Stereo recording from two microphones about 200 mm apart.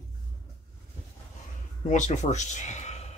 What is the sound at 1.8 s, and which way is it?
Speech, 35° left (ahead or behind).